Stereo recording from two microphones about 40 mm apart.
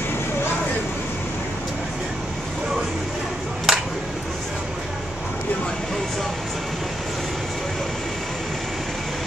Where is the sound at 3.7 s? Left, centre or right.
Centre.